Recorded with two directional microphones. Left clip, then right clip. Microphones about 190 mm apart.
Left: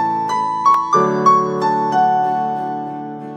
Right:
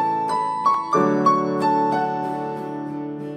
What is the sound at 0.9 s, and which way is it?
Music, 25° left (ahead or behind).